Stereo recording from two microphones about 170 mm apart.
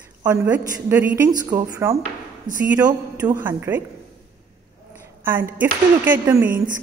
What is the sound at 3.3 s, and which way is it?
Speech, 10° right (ahead or behind).